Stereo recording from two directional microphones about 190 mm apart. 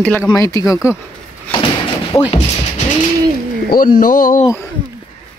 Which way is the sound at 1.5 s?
30° left (ahead or behind).